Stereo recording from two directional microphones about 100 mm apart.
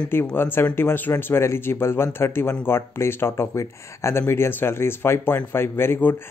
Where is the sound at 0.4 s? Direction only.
25° left (ahead or behind).